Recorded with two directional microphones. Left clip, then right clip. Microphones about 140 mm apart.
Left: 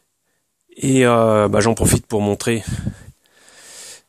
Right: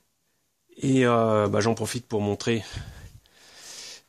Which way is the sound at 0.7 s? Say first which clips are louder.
Left 7 dB; 55° left (ahead or behind).